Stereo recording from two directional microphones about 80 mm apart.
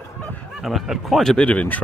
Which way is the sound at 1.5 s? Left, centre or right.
Centre.